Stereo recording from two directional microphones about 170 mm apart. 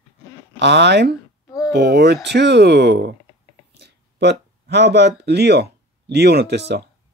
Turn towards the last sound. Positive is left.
turn(degrees=-75)  # may be behind; listen again after turning